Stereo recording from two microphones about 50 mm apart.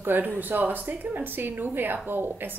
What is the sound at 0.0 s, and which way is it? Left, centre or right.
Speech, right.